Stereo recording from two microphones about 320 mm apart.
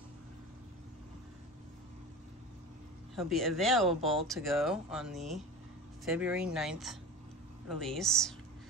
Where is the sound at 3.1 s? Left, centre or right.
Centre.